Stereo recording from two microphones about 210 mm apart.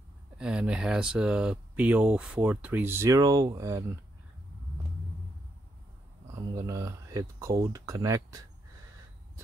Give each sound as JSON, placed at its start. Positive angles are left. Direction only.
{"t": 0.4, "sound": "speech", "side_deg": -5}
{"t": 6.3, "sound": "speech", "side_deg": -15}